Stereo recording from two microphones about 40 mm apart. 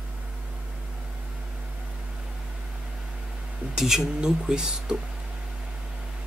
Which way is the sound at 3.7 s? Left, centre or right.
Centre.